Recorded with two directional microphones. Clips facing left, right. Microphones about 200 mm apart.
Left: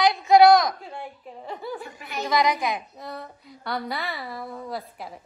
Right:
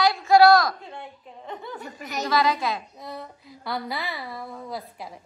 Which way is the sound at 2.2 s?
15° left (ahead or behind).